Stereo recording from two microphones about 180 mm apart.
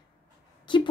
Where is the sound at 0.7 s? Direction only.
25° left (ahead or behind).